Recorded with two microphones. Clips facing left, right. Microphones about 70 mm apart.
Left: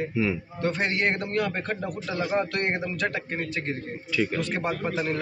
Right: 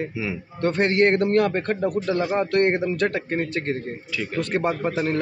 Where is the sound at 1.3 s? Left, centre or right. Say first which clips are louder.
Right 7 dB; right.